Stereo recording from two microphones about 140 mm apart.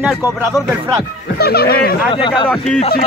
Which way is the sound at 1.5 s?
90° left.